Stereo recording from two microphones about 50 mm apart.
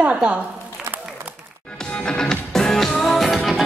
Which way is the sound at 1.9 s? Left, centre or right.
Centre.